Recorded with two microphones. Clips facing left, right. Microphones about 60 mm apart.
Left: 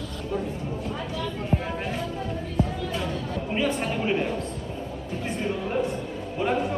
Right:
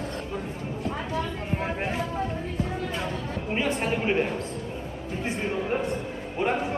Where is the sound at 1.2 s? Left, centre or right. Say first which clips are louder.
Left 1 dB; right.